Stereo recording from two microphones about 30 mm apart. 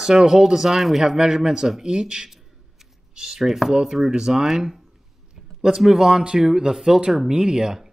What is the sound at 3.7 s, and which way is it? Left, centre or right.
Speech, centre.